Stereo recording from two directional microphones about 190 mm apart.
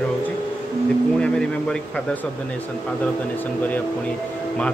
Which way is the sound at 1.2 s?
5° left (ahead or behind).